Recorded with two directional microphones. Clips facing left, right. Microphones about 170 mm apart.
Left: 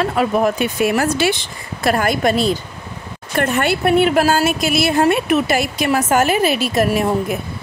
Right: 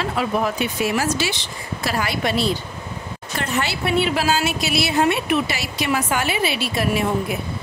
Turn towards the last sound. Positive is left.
turn(degrees=45)  # may be behind; listen again after turning